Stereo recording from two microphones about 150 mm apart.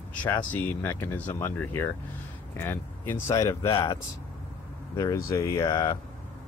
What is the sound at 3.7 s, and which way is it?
A man's voice, 30° left (ahead or behind).